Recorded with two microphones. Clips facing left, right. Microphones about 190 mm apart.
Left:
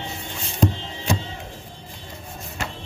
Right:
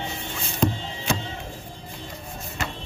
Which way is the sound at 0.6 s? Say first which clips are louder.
Left 2 dB; 40° left (ahead or behind).